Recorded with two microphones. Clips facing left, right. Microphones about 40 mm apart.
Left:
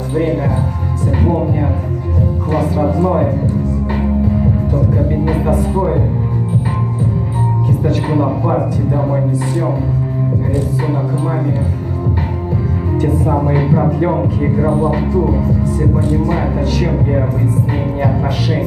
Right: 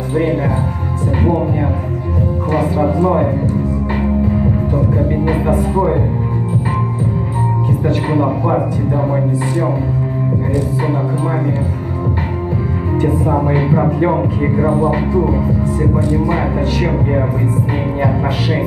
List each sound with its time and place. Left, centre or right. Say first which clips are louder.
0.1 s speech: even; centre
2.5 s speech: even; centre
4.7 s speech: even; centre
7.8 s speech: right 1 dB; centre
10.8 s speech: right 1 dB; centre
13.0 s speech: even; centre